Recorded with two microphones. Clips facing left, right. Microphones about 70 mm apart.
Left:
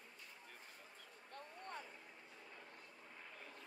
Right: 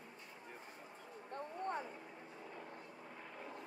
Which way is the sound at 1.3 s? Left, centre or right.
Right.